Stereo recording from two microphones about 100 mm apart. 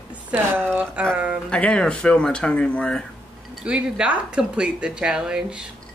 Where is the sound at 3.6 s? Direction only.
10° right (ahead or behind).